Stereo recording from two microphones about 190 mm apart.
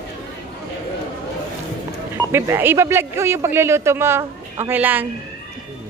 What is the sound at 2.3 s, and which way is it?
Speech, 10° right (ahead or behind).